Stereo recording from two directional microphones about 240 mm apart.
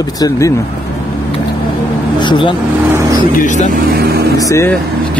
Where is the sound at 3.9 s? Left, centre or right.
Right.